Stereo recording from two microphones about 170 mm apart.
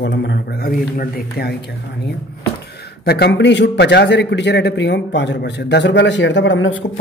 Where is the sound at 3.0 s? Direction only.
70° left (ahead or behind).